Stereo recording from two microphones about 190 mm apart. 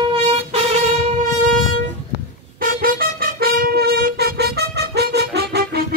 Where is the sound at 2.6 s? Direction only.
50° right (ahead or behind).